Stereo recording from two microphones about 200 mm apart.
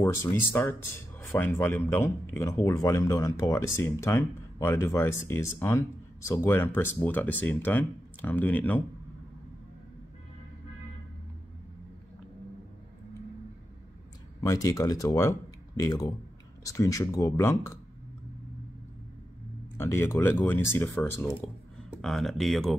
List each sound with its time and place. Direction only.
0.0 s speech: 15° left (ahead or behind)
14.4 s speech: 15° left (ahead or behind)
19.8 s speech: 10° left (ahead or behind)